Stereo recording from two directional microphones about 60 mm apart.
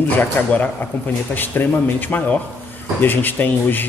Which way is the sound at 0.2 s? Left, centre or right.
Left.